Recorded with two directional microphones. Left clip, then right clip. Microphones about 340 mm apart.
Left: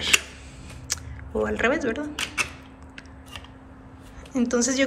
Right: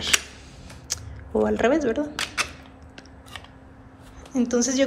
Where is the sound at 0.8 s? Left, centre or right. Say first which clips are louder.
Left 1 dB; centre.